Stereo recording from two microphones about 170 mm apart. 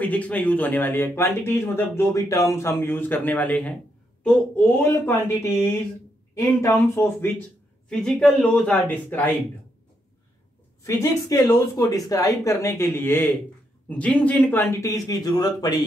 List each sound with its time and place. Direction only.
0.0 s speech: 10° left (ahead or behind)
7.9 s speech: 5° left (ahead or behind)
10.8 s speech: 20° left (ahead or behind)